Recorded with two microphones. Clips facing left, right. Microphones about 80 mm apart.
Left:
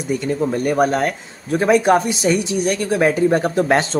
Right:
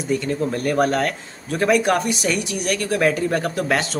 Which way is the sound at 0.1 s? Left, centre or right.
Centre.